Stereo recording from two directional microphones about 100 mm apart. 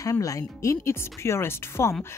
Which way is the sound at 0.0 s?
35° left (ahead or behind).